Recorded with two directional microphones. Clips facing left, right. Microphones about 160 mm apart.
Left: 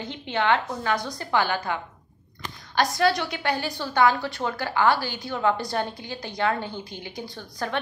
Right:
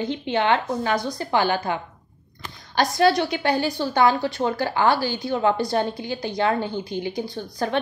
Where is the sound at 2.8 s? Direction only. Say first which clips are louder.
Right 4 dB; 30° right (ahead or behind).